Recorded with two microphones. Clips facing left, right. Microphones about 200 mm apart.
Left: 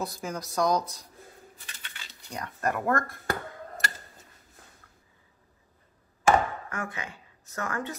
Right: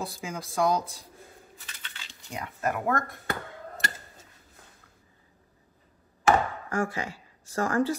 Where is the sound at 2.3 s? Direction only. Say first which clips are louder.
Even; 5° right (ahead or behind).